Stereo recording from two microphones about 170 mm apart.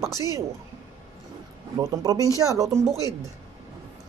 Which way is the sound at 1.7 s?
20° right (ahead or behind).